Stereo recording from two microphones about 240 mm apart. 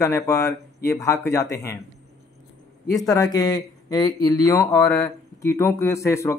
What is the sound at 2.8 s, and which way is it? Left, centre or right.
A man's voice, centre.